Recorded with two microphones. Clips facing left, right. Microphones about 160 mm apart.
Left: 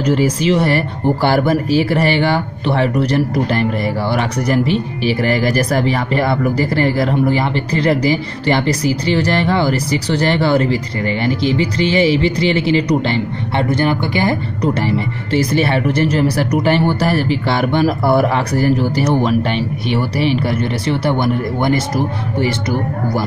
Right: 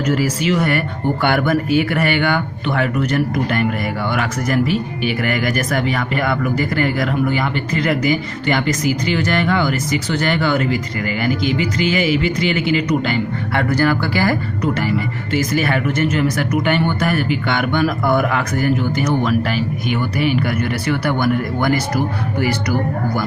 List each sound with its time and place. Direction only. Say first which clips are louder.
0.0 s speech: left 3 dB; 30° left (ahead or behind)